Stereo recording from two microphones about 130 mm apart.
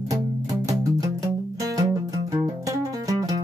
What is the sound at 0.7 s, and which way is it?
Music, 25° right (ahead or behind).